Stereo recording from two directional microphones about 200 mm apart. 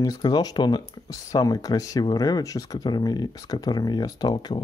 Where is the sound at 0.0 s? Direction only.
20° left (ahead or behind).